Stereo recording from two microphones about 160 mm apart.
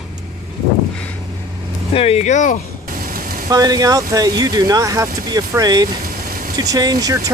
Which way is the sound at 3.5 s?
25° right (ahead or behind).